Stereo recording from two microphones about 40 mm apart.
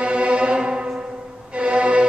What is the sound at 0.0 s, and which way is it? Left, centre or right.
Music, right.